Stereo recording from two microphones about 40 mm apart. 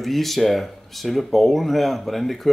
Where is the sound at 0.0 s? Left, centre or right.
Centre.